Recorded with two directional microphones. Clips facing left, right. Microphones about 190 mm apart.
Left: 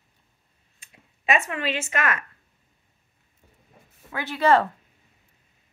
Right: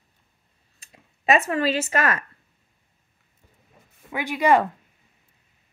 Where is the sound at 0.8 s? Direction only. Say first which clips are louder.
Right 2 dB; 35° right (ahead or behind).